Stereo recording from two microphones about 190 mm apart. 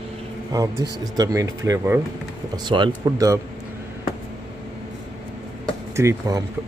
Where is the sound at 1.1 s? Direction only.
20° right (ahead or behind).